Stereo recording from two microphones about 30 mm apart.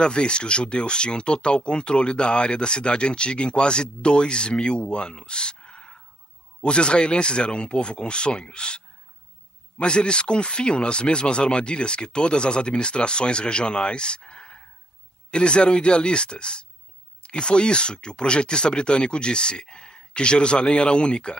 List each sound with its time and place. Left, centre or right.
0.0 s speech: left